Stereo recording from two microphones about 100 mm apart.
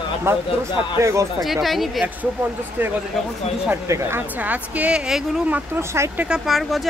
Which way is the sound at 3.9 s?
30° right (ahead or behind).